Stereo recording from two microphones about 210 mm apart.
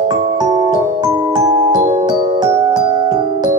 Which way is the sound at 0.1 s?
20° right (ahead or behind).